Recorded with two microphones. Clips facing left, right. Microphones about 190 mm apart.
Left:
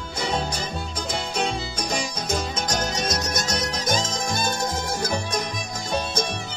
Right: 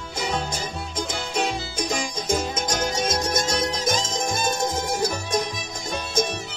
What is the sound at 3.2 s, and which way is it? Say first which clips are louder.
Music: right 3 dB; 30° right (ahead or behind).